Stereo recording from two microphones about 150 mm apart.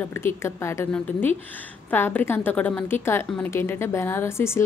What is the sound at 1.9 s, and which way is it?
A woman's voice, 10° left (ahead or behind).